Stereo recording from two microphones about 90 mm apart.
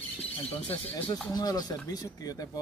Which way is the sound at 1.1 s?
45° left (ahead or behind).